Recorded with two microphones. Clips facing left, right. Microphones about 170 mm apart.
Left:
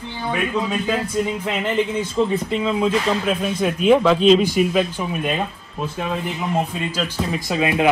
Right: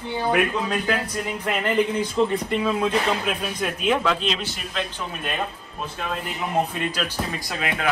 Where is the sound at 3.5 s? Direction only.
5° left (ahead or behind).